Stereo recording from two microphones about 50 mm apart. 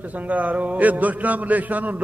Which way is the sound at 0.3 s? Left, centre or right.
Right.